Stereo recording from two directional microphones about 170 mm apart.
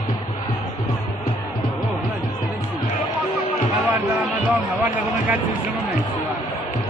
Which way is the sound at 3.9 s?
10° right (ahead or behind).